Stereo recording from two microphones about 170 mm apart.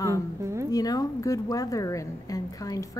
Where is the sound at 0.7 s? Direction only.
20° left (ahead or behind).